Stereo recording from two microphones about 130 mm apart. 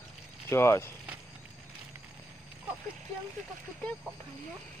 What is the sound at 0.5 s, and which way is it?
Speech, 20° left (ahead or behind).